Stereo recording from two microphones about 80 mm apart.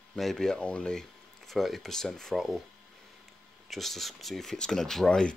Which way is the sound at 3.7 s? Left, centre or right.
Centre.